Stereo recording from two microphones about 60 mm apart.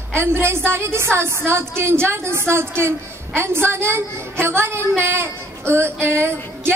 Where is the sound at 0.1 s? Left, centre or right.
Right.